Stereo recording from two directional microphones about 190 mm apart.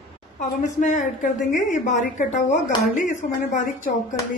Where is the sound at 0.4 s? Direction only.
40° left (ahead or behind).